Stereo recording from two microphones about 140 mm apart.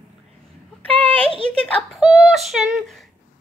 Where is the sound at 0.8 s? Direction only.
10° left (ahead or behind).